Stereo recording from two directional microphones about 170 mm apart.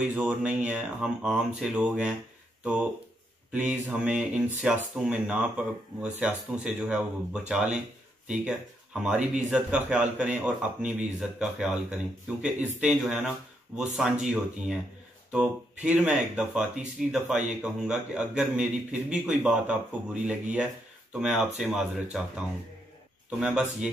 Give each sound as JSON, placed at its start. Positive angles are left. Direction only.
{"t": 0.0, "sound": "speech", "side_deg": -10}
{"t": 23.4, "sound": "speech", "side_deg": -5}